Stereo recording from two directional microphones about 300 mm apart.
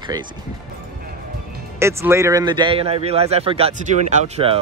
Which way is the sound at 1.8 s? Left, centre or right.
Centre.